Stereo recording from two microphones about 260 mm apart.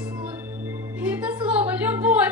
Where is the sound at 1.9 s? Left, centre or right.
Centre.